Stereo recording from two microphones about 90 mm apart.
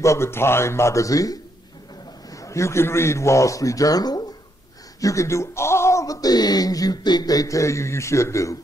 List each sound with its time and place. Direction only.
0.0 s speech: 30° left (ahead or behind)
5.0 s speech: 35° left (ahead or behind)